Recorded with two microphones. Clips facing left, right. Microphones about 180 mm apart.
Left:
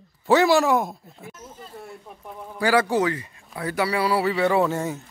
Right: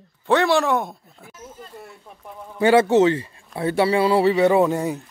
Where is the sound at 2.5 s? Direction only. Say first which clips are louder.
Right 6 dB; 25° right (ahead or behind).